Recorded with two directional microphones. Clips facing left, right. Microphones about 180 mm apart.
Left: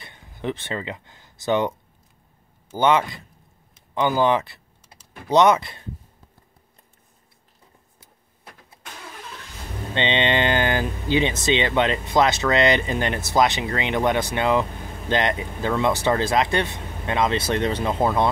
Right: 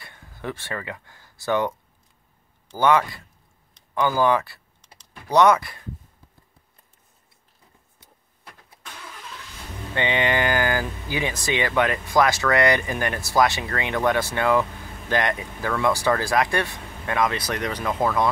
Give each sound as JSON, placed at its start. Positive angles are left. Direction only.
{"t": 0.0, "sound": "speech", "side_deg": 20}
{"t": 2.8, "sound": "speech", "side_deg": 20}
{"t": 4.8, "sound": "typing", "side_deg": 5}
{"t": 5.3, "sound": "speech", "side_deg": 20}
{"t": 9.9, "sound": "speech", "side_deg": 25}